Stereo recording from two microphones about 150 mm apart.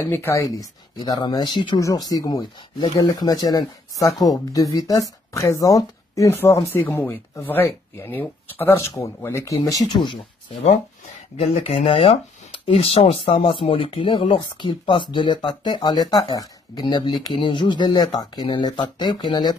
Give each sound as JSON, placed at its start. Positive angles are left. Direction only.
{"t": 0.0, "sound": "speech", "side_deg": 15}
{"t": 11.3, "sound": "speech", "side_deg": 40}